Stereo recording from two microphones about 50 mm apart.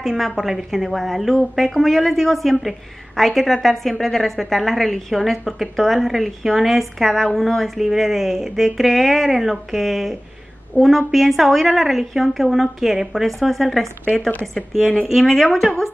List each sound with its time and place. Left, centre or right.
0.0 s a woman's voice: centre